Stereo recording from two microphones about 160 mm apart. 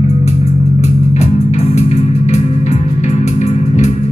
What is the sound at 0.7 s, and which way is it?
Music, 45° left (ahead or behind).